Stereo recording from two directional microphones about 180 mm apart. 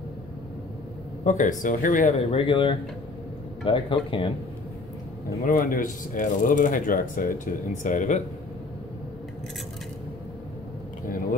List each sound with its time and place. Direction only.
1.2 s speech: 45° left (ahead or behind)
2.1 s speech: 30° left (ahead or behind)
5.4 s speech: 50° left (ahead or behind)